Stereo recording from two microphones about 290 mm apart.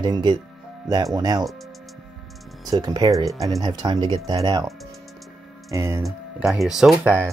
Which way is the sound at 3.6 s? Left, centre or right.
Centre.